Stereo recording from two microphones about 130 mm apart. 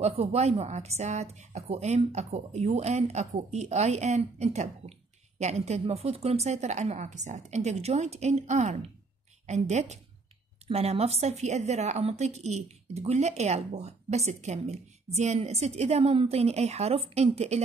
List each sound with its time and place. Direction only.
0.0 s a woman's voice: 55° right (ahead or behind)